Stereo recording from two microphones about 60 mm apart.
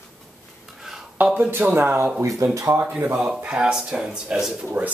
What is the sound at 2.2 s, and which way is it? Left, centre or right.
Speech, right.